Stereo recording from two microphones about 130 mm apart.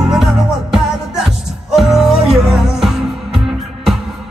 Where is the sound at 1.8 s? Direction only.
Centre (ahead or behind).